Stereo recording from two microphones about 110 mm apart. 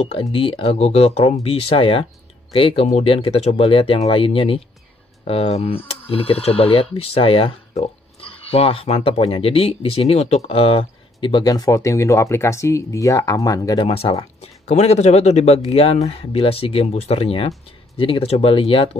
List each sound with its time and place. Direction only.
0.0 s speech: 65° left (ahead or behind); by 13.7 s 35° left (ahead or behind)
13.7 s speech: 60° left (ahead or behind)